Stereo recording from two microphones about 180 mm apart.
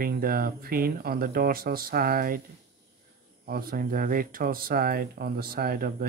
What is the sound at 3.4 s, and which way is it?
Speech, 55° right (ahead or behind).